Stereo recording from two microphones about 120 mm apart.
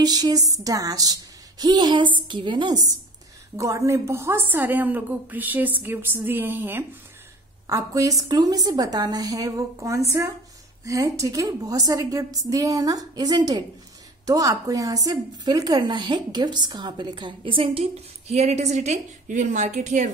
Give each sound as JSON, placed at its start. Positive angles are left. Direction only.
{"t": 0.0, "sound": "a woman's voice", "side_deg": -35}
{"t": 3.5, "sound": "a woman's voice", "side_deg": -25}
{"t": 7.6, "sound": "a woman's voice", "side_deg": -30}
{"t": 18.3, "sound": "a woman's voice", "side_deg": -70}